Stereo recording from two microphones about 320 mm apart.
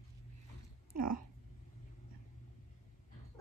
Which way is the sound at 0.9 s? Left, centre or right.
Right.